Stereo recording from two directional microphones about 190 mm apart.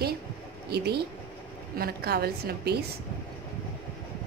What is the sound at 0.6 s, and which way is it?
A woman's voice, 60° right (ahead or behind).